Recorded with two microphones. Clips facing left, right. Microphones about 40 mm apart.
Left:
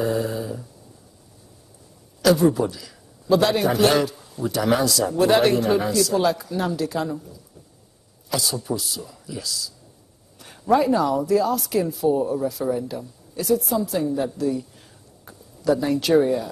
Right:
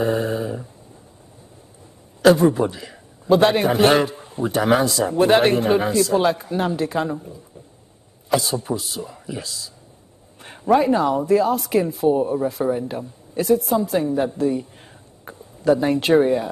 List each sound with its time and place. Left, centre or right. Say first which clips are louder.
0.0 s dog: right 3 dB; right
2.2 s a man's voice: right 3 dB; right